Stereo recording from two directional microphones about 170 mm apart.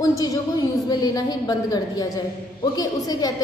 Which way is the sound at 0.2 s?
20° left (ahead or behind).